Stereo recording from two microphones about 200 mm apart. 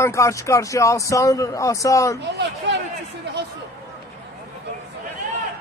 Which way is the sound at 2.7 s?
60° right (ahead or behind).